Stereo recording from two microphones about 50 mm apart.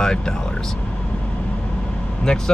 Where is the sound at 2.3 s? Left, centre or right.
Centre.